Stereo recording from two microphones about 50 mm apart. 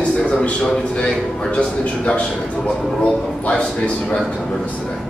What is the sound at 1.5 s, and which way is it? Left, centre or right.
A man's voice, left.